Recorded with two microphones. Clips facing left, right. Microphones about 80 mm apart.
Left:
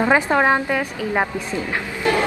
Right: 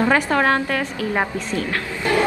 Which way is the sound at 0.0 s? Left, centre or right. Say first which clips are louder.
Left 1 dB; centre.